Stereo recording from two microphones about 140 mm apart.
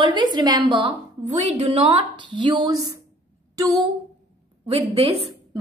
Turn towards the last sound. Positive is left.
turn(degrees=-45)  # may be behind; listen again after turning